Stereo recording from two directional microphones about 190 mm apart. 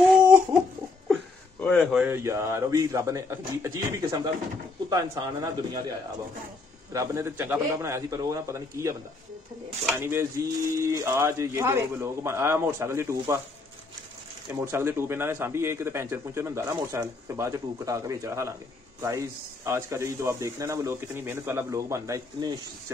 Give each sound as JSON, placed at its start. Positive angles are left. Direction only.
{"t": 1.6, "sound": "a sound", "side_deg": 5}
{"t": 2.0, "sound": "a man's voice", "side_deg": -15}
{"t": 9.9, "sound": "a man's voice", "side_deg": -15}
{"t": 14.5, "sound": "a man's voice", "side_deg": -10}